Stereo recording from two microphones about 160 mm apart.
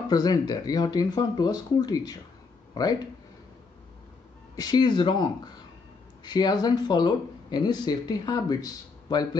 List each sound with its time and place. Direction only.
0.1 s speech: 25° left (ahead or behind)
4.6 s speech: 25° left (ahead or behind)